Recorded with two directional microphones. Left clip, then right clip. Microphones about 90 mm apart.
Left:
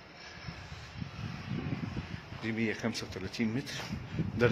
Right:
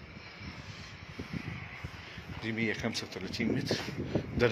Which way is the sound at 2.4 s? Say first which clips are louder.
Right 1 dB; 60° left (ahead or behind).